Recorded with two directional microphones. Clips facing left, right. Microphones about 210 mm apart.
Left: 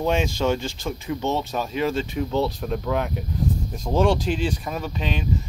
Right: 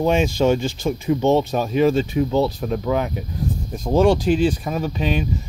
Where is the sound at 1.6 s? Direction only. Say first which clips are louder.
Right 7 dB; 45° right (ahead or behind).